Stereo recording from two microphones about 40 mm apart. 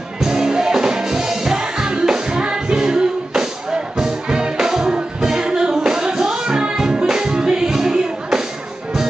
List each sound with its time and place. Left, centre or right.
0.2 s music: centre